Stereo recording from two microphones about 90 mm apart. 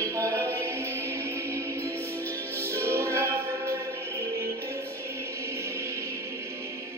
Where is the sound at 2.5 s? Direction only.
30° right (ahead or behind).